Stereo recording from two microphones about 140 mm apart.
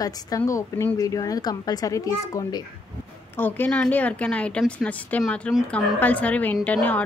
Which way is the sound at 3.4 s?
15° left (ahead or behind).